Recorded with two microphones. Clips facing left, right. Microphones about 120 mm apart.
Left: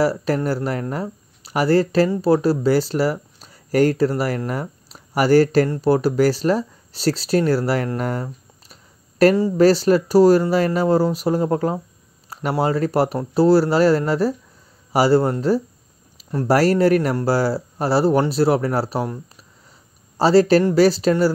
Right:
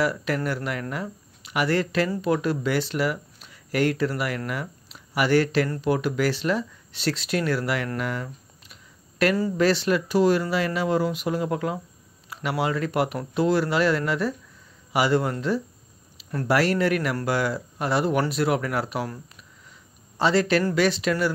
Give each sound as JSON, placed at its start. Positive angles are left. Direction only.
{"t": 0.0, "sound": "speech", "side_deg": 35}